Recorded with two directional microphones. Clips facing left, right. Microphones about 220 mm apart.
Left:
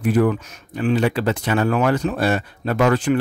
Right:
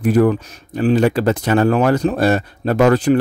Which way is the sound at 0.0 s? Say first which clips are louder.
Right 4 dB; 40° right (ahead or behind).